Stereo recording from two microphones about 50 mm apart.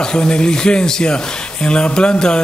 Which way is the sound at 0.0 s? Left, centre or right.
Centre.